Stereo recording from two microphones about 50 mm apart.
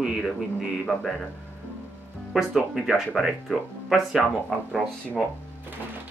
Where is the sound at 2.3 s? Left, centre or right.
Centre.